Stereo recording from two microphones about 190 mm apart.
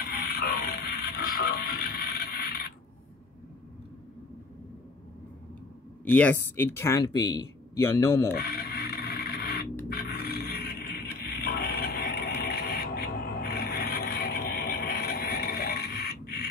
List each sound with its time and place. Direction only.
0.0 s music: 50° left (ahead or behind)
6.0 s speech: 10° left (ahead or behind)
8.3 s a sound: 55° left (ahead or behind)